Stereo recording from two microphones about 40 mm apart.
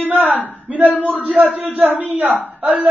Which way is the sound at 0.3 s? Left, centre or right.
Right.